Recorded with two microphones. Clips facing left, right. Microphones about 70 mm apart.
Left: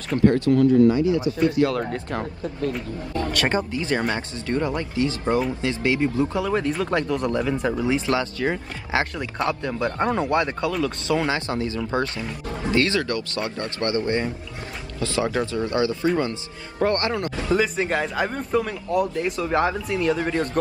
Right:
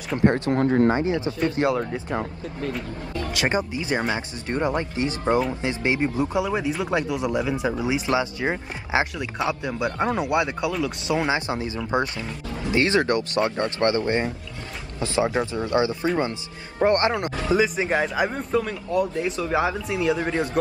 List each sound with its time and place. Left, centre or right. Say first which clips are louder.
0.2 s speech: left 3 dB; right
0.7 s speech: left 2 dB; right
1.8 s speech: even; centre
3.3 s speech: right 1 dB; centre
17.6 s speech: right 2 dB; centre